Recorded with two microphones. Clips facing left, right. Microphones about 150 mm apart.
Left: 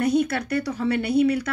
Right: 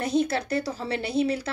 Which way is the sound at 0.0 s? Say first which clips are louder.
Left 3 dB; 30° right (ahead or behind).